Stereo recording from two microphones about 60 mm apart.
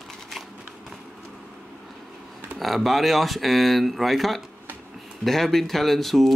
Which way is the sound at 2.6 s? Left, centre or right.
Centre.